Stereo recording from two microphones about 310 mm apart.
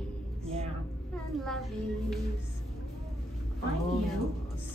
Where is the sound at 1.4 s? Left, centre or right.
Centre.